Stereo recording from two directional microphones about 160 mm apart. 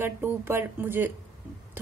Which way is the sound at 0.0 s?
15° right (ahead or behind).